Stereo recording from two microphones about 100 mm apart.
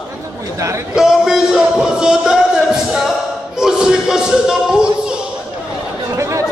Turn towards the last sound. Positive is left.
turn(degrees=-30)  # may be behind; listen again after turning